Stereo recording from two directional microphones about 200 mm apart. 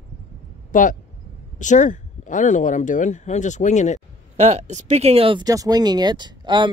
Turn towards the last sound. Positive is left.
turn(degrees=-25)  # may be behind; listen again after turning